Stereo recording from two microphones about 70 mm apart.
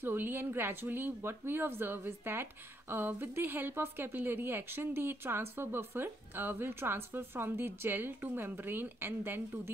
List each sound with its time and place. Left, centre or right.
0.0 s speech: right